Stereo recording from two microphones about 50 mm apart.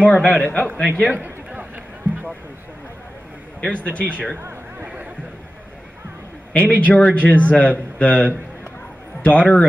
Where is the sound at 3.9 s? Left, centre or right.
Right.